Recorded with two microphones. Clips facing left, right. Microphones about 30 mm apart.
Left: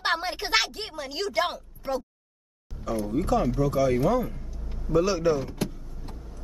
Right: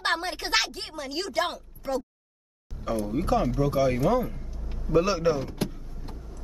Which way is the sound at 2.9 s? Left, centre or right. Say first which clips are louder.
Even; right.